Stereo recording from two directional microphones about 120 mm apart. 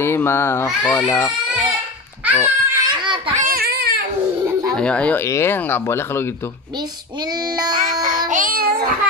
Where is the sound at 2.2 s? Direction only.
15° right (ahead or behind).